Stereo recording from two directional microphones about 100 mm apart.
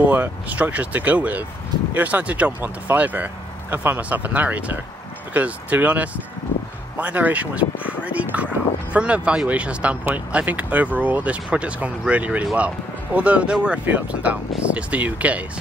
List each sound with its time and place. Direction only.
0.1 s speech: 15° right (ahead or behind)